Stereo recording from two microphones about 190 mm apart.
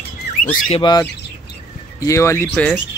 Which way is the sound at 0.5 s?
30° left (ahead or behind).